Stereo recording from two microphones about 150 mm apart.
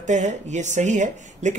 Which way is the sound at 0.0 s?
50° right (ahead or behind).